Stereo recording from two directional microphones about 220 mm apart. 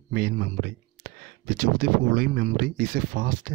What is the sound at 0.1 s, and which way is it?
Speech, 45° right (ahead or behind).